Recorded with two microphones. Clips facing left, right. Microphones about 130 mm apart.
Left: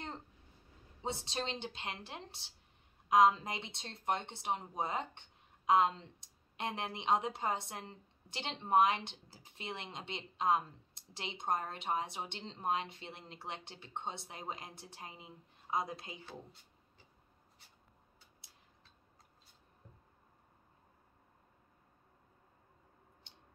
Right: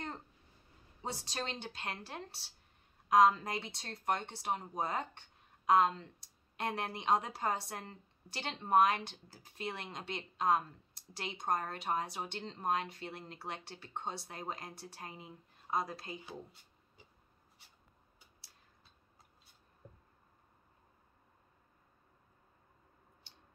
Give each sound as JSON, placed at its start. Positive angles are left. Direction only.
{"t": 1.0, "sound": "speech", "side_deg": 25}